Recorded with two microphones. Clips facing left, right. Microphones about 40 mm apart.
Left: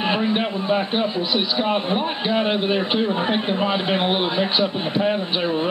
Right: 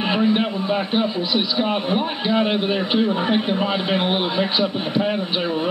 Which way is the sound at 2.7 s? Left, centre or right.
Left.